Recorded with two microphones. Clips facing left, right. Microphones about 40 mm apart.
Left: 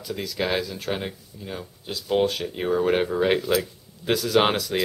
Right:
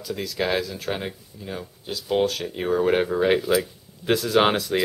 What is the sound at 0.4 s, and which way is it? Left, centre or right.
Speech, centre.